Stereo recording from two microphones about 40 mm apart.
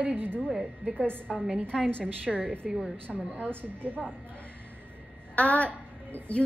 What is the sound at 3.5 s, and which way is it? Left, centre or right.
Speech, right.